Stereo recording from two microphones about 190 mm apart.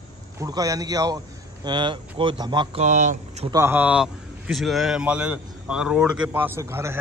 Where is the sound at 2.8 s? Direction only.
40° right (ahead or behind).